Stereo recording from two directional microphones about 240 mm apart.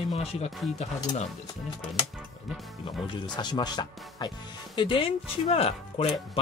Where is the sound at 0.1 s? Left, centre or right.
Left.